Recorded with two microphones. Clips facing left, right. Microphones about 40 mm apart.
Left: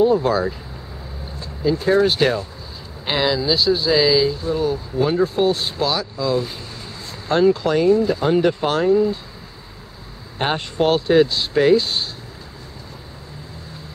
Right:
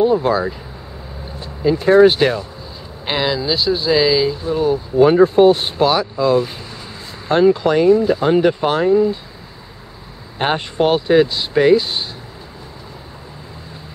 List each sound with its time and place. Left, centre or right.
0.0 s speech: centre
1.6 s speech: right
3.1 s speech: centre
5.0 s speech: right; by 9.2 s centre
10.4 s speech: centre